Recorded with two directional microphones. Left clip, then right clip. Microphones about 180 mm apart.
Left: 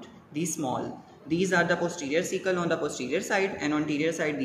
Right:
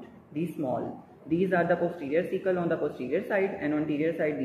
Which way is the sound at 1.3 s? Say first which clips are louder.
Left 1 dB; 35° left (ahead or behind).